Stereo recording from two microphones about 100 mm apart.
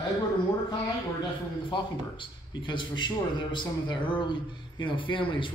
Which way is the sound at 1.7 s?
55° left (ahead or behind).